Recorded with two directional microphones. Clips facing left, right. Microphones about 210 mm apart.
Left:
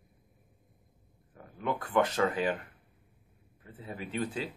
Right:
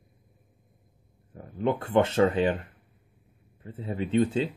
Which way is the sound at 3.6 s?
30° right (ahead or behind).